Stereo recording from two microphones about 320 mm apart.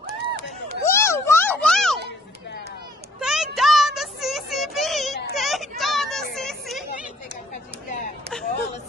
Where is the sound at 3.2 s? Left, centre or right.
Centre.